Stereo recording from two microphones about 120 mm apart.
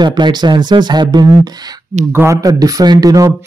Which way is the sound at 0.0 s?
35° right (ahead or behind).